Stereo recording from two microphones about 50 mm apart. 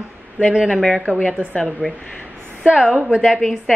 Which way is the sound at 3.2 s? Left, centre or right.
Centre.